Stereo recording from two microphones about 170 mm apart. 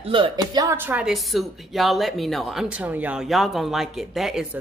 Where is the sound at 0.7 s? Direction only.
10° right (ahead or behind).